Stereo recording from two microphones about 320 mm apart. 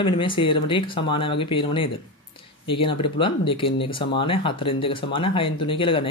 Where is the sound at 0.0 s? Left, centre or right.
Centre.